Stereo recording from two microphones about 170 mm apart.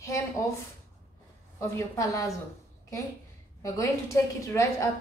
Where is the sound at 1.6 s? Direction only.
20° left (ahead or behind).